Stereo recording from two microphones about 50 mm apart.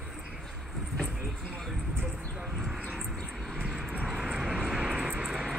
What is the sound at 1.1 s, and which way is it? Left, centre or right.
Vehicle, centre.